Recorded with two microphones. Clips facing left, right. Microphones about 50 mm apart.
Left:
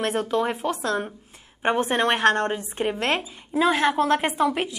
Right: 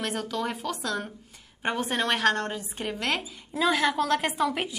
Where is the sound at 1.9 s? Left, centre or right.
Left.